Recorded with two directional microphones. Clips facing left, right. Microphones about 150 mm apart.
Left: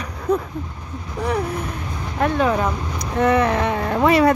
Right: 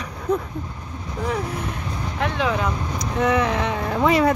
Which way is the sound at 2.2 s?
45° left (ahead or behind).